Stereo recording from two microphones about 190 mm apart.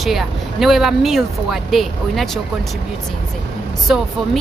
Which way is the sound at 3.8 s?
Centre (ahead or behind).